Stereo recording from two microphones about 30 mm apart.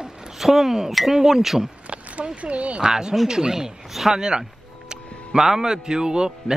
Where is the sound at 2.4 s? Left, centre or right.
Right.